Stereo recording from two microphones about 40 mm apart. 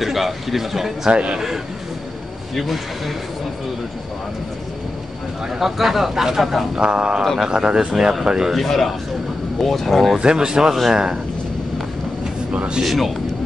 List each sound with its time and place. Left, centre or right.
0.0 s speech: centre
1.1 s speech: right
2.5 s a man's voice: centre
5.6 s a man's voice: centre
6.7 s speech: right
7.9 s speech: centre
8.5 s a man's voice: centre
10.1 s speech: centre
12.8 s a man's voice: centre